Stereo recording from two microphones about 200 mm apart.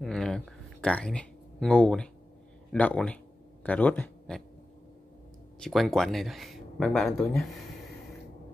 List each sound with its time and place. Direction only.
0.0 s speech: centre (ahead or behind)
5.6 s speech: centre (ahead or behind)